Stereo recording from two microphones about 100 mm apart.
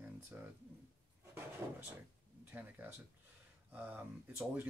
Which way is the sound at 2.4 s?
20° right (ahead or behind).